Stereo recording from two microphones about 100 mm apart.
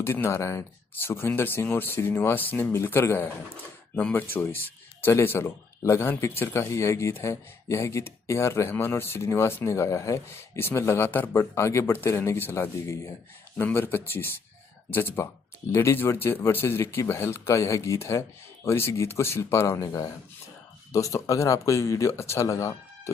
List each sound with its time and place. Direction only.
0.0 s speech: 25° left (ahead or behind)